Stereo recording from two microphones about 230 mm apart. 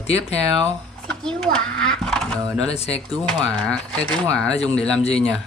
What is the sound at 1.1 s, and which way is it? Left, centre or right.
A child's voice, centre.